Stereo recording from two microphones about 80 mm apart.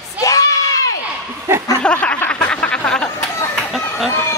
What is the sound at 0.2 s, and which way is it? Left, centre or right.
Crowd, left.